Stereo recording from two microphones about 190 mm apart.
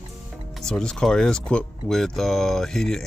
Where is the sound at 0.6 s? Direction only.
5° left (ahead or behind).